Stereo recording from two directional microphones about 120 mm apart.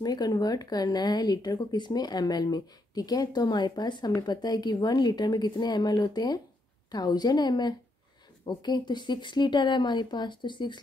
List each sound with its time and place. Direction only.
0.0 s a woman's voice: 35° left (ahead or behind)